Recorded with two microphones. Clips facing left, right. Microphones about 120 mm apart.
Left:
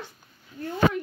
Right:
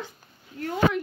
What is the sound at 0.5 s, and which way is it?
Speech, 90° right.